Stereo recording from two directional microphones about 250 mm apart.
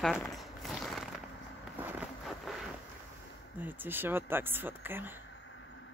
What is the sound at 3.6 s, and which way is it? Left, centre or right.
Speech, centre.